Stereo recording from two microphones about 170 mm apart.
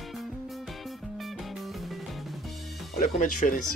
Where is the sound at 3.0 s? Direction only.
50° left (ahead or behind).